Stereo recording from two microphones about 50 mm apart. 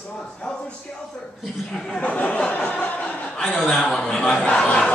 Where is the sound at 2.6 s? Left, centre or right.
Left.